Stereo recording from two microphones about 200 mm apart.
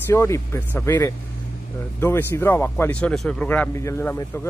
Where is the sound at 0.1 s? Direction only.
15° left (ahead or behind).